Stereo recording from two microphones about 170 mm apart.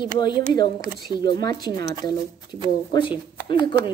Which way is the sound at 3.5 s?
25° left (ahead or behind).